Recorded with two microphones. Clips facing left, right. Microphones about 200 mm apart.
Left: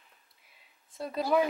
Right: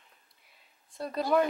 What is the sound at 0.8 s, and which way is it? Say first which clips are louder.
Speech: even; centre (ahead or behind).